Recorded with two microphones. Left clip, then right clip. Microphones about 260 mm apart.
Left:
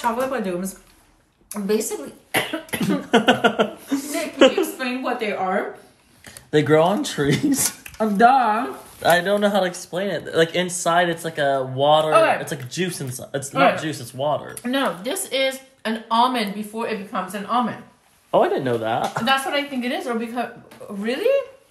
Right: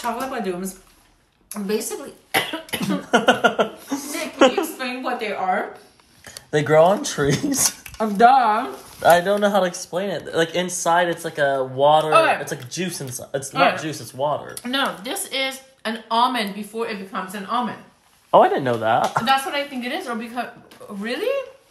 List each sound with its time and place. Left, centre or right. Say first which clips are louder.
0.0 s speech: left 3 dB; centre
2.3 s cough: right 1 dB; centre
4.6 s a sound: left 1 dB; centre
6.2 s speech: left 2 dB; right
12.1 s speech: even; centre
14.6 s speech: even; centre
18.3 s speech: right 3 dB; right
19.2 s speech: even; centre